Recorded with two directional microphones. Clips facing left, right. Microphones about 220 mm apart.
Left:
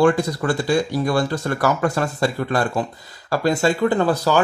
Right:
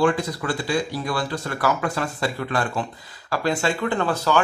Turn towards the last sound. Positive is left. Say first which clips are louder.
# left 4 dB
turn(degrees=35)  # may be behind; listen again after turning